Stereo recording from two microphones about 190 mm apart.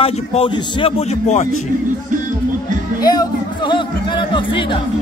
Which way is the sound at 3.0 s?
20° left (ahead or behind).